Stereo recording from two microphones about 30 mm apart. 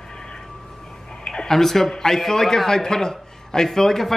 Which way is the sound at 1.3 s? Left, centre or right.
Centre.